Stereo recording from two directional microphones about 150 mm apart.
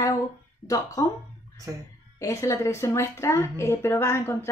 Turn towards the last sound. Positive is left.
turn(degrees=15)  # may be behind; listen again after turning